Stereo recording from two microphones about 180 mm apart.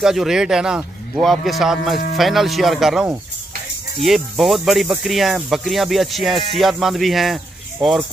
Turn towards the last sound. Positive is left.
turn(degrees=0)  # may be behind; listen again after turning